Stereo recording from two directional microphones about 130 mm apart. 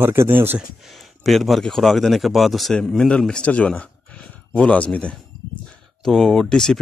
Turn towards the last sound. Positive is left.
turn(degrees=5)  # may be behind; listen again after turning